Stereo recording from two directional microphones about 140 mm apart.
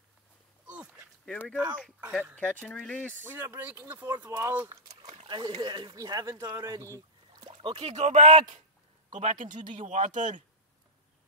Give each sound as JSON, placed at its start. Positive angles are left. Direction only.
{"t": 0.7, "sound": "a sound", "side_deg": -10}
{"t": 1.2, "sound": "speech", "side_deg": 10}
{"t": 2.0, "sound": "speech", "side_deg": -10}
{"t": 2.3, "sound": "speech", "side_deg": 10}
{"t": 3.3, "sound": "speech", "side_deg": -15}
{"t": 5.3, "sound": "speech", "side_deg": -30}
{"t": 7.5, "sound": "speech", "side_deg": -40}
{"t": 9.1, "sound": "speech", "side_deg": -65}